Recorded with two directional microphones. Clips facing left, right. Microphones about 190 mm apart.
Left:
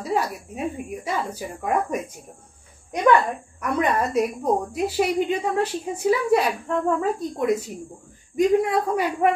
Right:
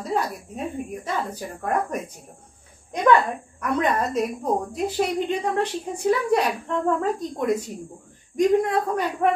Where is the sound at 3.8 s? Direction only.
10° left (ahead or behind).